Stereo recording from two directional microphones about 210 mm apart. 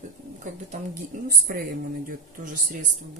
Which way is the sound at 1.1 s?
40° right (ahead or behind).